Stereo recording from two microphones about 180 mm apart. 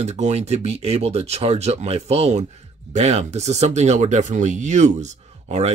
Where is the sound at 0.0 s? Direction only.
40° right (ahead or behind).